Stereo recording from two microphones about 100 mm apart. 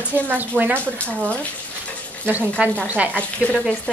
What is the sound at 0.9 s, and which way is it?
Speech, 15° left (ahead or behind).